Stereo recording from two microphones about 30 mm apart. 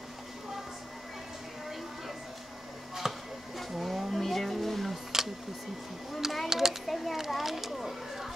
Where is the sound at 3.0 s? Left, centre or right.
Centre.